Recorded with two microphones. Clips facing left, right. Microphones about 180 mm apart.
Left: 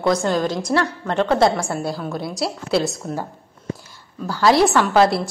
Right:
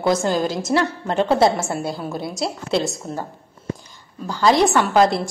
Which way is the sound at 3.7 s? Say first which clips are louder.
Left 1 dB; 5° left (ahead or behind).